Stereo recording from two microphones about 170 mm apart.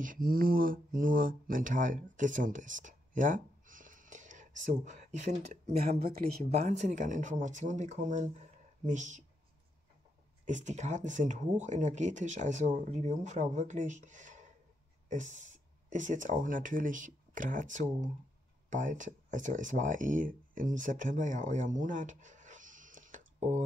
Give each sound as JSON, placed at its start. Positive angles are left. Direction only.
{"t": 0.0, "sound": "speech", "side_deg": -55}
{"t": 5.9, "sound": "speech", "side_deg": -60}
{"t": 6.5, "sound": "speech", "side_deg": -40}
{"t": 10.4, "sound": "speech", "side_deg": -45}